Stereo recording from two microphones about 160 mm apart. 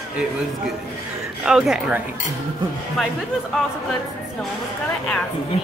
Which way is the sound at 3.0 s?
Centre (ahead or behind).